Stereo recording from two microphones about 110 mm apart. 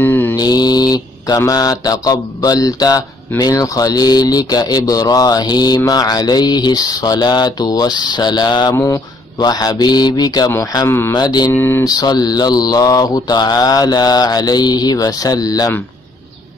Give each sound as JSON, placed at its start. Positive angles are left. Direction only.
{"t": 0.0, "sound": "mantra", "side_deg": 15}
{"t": 0.4, "sound": "mantra", "side_deg": 35}
{"t": 8.7, "sound": "mantra", "side_deg": 25}
{"t": 9.4, "sound": "mantra", "side_deg": 35}
{"t": 10.9, "sound": "mantra", "side_deg": 20}
{"t": 11.1, "sound": "mantra", "side_deg": 40}
{"t": 11.5, "sound": "mantra", "side_deg": 20}
{"t": 11.8, "sound": "mantra", "side_deg": 35}